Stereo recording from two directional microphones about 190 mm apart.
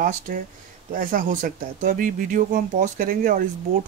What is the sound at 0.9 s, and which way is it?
Speech, 45° right (ahead or behind).